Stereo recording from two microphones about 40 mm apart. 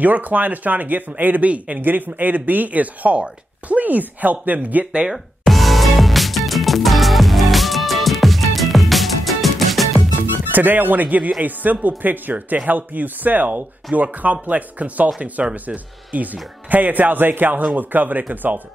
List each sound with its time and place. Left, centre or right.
0.0 s speech: right
1.8 s speech: right
5.4 s music: centre
10.5 s speech: right